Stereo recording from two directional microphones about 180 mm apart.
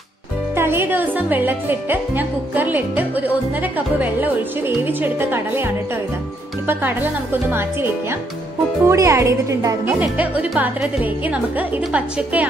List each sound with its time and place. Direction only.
0.6 s a woman's voice: 10° right (ahead or behind)
6.7 s a woman's voice: 10° right (ahead or behind)